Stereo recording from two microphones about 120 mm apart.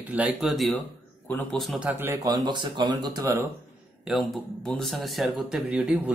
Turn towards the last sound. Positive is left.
turn(degrees=-10)  # may be behind; listen again after turning